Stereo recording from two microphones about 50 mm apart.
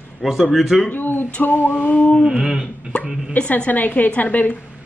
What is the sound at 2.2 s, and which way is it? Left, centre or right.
Speech, centre.